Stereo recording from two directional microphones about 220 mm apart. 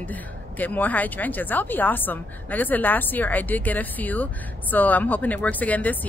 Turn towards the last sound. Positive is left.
turn(degrees=5)  # may be behind; listen again after turning